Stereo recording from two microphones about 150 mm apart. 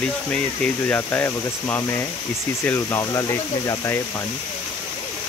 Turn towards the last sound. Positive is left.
turn(degrees=20)  # may be behind; listen again after turning